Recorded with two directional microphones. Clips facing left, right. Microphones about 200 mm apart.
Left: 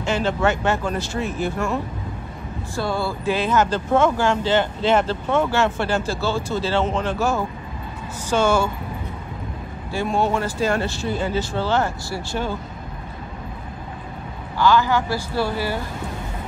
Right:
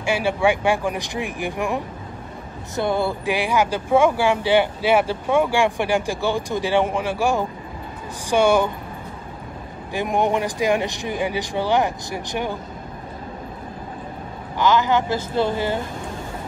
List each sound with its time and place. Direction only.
0.0 s speech: 10° right (ahead or behind)
9.9 s speech: 15° right (ahead or behind)
14.6 s speech: 20° right (ahead or behind)